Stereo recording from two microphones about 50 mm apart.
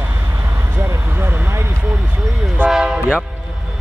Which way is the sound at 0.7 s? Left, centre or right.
Right.